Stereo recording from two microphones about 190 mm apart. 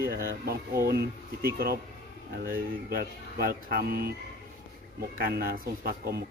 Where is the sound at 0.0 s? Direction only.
55° right (ahead or behind).